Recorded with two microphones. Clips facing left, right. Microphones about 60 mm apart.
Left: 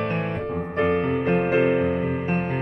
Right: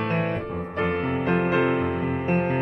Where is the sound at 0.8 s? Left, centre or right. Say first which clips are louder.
Left 3 dB; centre.